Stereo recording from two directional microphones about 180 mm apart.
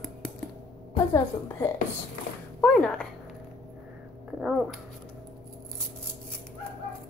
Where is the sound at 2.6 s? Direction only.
5° left (ahead or behind).